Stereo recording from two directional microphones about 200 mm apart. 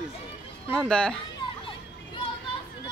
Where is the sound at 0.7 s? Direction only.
5° left (ahead or behind).